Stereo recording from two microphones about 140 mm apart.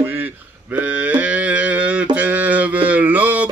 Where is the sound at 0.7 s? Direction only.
10° right (ahead or behind).